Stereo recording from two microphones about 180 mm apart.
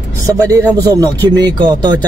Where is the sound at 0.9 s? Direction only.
25° right (ahead or behind).